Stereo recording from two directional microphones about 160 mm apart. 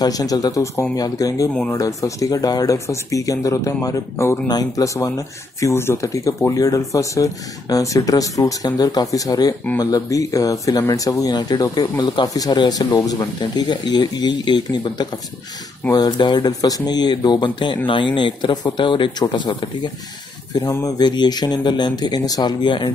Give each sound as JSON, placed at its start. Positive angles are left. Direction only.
{"t": 0.0, "sound": "speech", "side_deg": 25}